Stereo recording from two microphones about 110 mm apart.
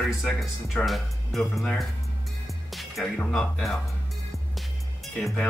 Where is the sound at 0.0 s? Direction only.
5° left (ahead or behind).